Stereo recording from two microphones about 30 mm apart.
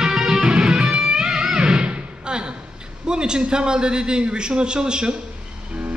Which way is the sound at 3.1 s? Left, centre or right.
Right.